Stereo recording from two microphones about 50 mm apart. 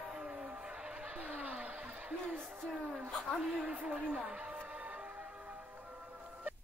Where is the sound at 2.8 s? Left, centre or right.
Right.